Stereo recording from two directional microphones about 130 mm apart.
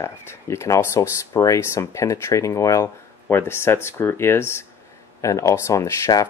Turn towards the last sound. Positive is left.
turn(degrees=25)  # may be behind; listen again after turning